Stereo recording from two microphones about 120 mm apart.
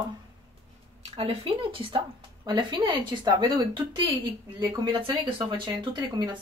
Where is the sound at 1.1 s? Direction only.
50° right (ahead or behind).